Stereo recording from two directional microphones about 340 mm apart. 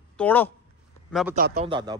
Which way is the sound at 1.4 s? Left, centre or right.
Right.